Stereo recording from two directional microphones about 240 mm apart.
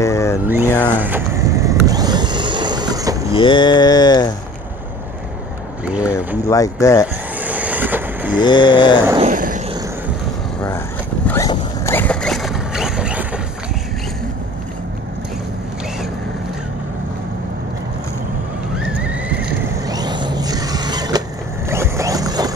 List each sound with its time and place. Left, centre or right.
0.0 s speech: centre
0.7 s mantra: centre
0.9 s vehicle: centre
3.3 s mantra: left
5.9 s speech: centre
6.1 s mantra: centre
7.3 s vehicle: centre
8.4 s vehicle: centre
9.2 s vehicle: right
11.2 s zipper: centre
18.8 s horse: centre
19.9 s vehicle: centre
21.6 s a sound: centre